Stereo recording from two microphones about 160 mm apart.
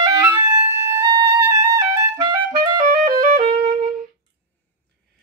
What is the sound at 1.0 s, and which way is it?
Music, 25° right (ahead or behind).